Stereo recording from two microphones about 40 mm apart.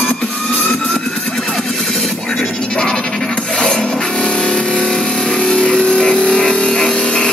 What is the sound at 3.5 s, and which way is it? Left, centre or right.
Wood, left.